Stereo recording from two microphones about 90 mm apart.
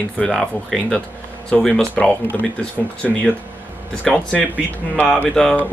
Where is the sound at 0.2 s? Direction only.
5° left (ahead or behind).